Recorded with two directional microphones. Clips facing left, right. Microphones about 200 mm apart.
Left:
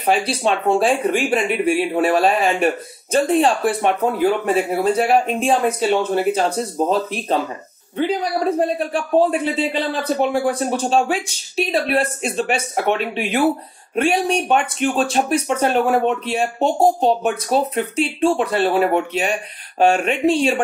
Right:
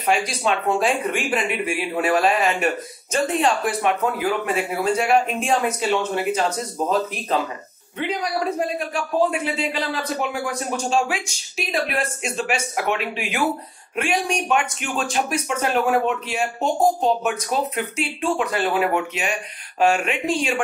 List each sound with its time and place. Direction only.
0.0 s speech: 30° left (ahead or behind)